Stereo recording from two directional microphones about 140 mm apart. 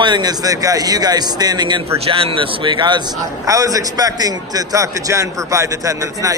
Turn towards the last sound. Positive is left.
turn(degrees=-25)  # may be behind; listen again after turning